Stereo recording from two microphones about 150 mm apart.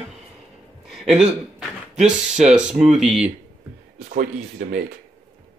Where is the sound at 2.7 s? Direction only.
50° right (ahead or behind).